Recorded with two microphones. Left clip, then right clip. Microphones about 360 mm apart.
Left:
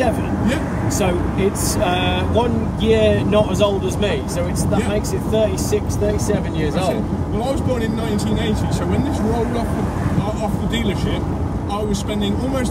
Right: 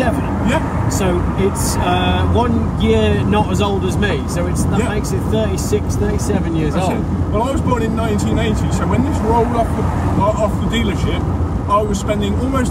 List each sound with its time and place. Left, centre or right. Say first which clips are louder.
2.0 s speech: right 2 dB; centre
2.8 s speech: left 1 dB; left